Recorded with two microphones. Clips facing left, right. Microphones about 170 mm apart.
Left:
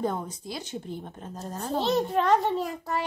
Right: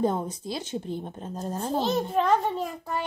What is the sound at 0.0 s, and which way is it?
Speech, 25° right (ahead or behind).